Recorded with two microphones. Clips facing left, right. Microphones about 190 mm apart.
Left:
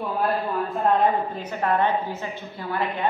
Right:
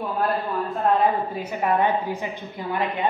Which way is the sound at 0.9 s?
5° right (ahead or behind).